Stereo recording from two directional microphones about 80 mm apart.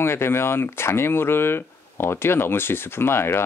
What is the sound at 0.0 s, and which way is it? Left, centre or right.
Speech, left.